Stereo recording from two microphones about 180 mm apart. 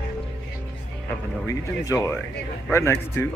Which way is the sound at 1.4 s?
20° left (ahead or behind).